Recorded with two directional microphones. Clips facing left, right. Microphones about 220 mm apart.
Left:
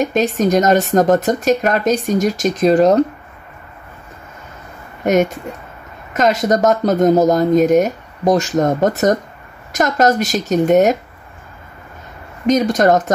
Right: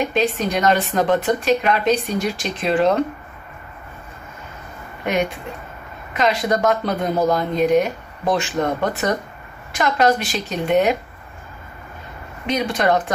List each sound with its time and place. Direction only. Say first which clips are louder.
0.0 s speech: left 4 dB; 45° left (ahead or behind)
5.0 s speech: left 7 dB; 45° left (ahead or behind)
12.4 s speech: left 7 dB; 45° left (ahead or behind)